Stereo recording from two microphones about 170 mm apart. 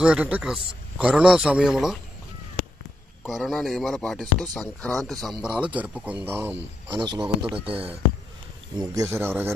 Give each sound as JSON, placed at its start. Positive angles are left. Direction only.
{"t": 0.0, "sound": "speech", "side_deg": -5}
{"t": 3.3, "sound": "speech", "side_deg": 0}
{"t": 7.0, "sound": "speech", "side_deg": -25}
{"t": 8.7, "sound": "speech", "side_deg": -25}
{"t": 9.2, "sound": "speech", "side_deg": -10}